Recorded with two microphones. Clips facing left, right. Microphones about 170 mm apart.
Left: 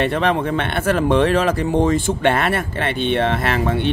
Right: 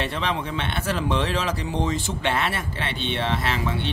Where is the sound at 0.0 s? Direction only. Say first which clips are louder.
Left 9 dB; 55° left (ahead or behind).